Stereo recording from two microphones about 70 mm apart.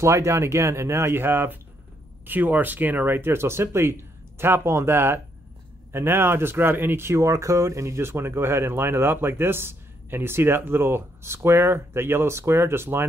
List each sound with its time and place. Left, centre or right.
0.0 s speech: right